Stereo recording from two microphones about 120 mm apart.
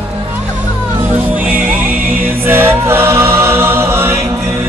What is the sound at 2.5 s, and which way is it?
Choir, 20° right (ahead or behind).